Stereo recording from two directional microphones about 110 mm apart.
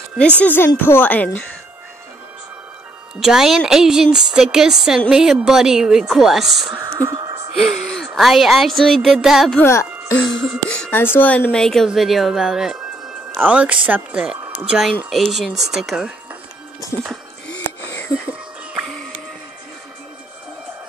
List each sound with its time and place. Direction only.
0.4 s a woman's voice: 20° left (ahead or behind)
3.2 s speech: 5° right (ahead or behind)
6.7 s speech: 30° right (ahead or behind)
7.2 s music: 50° right (ahead or behind)
7.5 s speech: 5° left (ahead or behind)
9.6 s speech: 25° left (ahead or behind)
10.7 s speech: 15° left (ahead or behind); by 14.4 s 10° right (ahead or behind)
14.5 s a sound: 15° right (ahead or behind)
15.0 s speech: centre (ahead or behind)
17.8 s wheeze: 15° left (ahead or behind)